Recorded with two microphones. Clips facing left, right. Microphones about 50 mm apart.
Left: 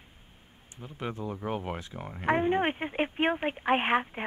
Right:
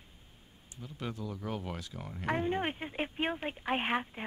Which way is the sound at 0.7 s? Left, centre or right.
Left.